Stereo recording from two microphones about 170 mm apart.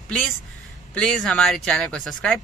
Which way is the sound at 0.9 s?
5° left (ahead or behind).